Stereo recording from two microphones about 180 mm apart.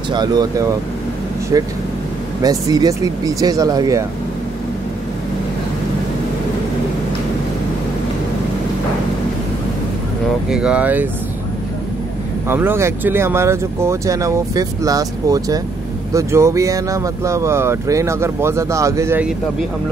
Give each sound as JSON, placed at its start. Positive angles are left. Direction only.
{"t": 0.1, "sound": "speech", "side_deg": -20}
{"t": 10.5, "sound": "speech", "side_deg": -5}
{"t": 12.4, "sound": "speech", "side_deg": -10}